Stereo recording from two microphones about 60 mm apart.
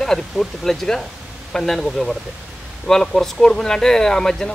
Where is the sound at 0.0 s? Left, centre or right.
Centre.